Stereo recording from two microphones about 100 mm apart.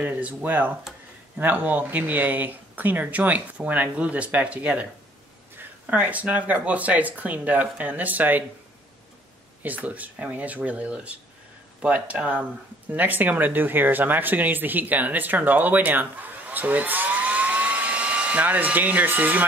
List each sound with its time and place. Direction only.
0.0 s speech: 15° right (ahead or behind)
5.9 s speech: 15° right (ahead or behind)
9.6 s speech: 15° right (ahead or behind)